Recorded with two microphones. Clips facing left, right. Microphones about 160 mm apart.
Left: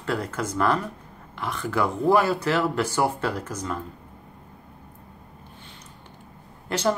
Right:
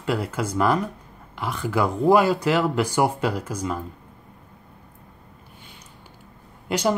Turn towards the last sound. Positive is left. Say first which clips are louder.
# right 2 dB
turn(degrees=-10)  # may be behind; listen again after turning